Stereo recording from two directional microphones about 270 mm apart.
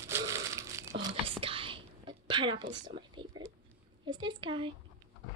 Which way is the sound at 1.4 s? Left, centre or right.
Centre.